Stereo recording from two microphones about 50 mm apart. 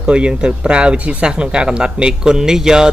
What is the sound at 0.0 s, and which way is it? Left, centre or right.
Speech, centre.